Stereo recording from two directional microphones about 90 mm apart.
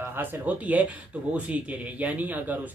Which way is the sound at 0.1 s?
20° right (ahead or behind).